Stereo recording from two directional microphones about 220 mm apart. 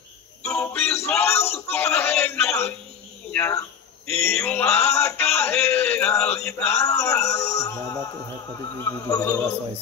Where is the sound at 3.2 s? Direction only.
10° left (ahead or behind).